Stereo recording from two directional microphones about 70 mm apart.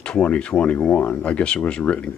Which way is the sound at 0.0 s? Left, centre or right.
Centre.